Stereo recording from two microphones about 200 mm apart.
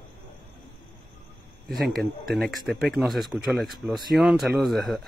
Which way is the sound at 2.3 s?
Centre (ahead or behind).